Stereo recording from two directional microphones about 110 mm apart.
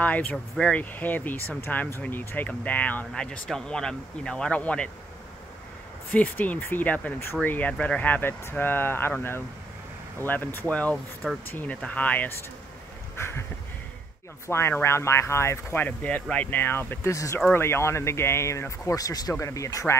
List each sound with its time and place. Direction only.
0.0 s speech: 15° left (ahead or behind)
6.1 s speech: 15° left (ahead or behind)
10.2 s speech: 15° left (ahead or behind)
13.1 s a sound: 20° left (ahead or behind)
14.5 s speech: 20° left (ahead or behind)